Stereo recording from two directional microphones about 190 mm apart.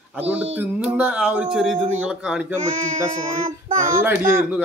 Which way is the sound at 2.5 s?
40° right (ahead or behind).